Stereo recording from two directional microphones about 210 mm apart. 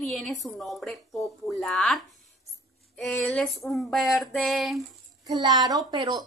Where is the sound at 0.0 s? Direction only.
Centre (ahead or behind).